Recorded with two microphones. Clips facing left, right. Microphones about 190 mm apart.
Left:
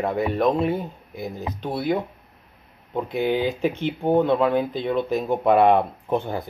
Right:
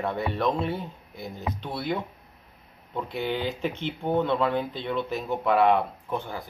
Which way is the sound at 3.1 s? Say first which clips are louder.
Left 7 dB; 10° left (ahead or behind).